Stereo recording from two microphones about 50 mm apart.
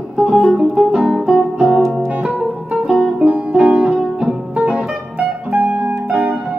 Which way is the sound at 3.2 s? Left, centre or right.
Right.